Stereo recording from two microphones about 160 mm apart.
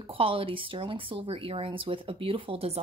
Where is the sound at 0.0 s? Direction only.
35° right (ahead or behind).